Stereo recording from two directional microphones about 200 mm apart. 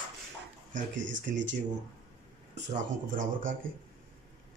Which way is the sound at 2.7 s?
40° right (ahead or behind).